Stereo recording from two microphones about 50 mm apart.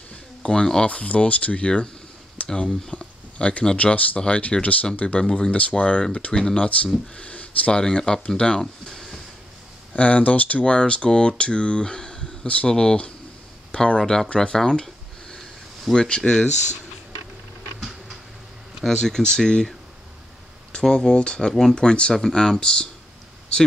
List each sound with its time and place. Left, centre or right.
0.4 s speech: centre
0.8 s speech: left
7.8 s speech: centre
9.9 s speech: left
15.9 s speech: centre
18.9 s speech: centre
20.7 s speech: centre